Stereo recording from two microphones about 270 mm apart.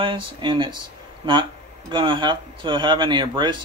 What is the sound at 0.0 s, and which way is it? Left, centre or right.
Speech, centre.